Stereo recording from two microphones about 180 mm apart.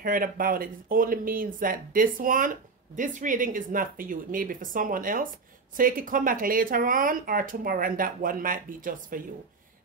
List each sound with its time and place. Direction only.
0.0 s speech: 50° right (ahead or behind)